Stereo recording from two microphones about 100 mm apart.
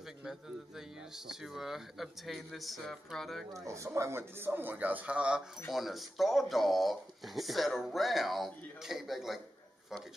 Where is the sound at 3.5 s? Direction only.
30° right (ahead or behind).